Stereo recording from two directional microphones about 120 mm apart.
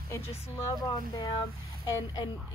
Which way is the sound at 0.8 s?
30° left (ahead or behind).